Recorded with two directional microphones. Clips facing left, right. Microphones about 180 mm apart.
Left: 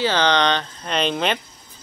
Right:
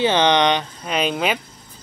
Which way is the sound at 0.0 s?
20° right (ahead or behind).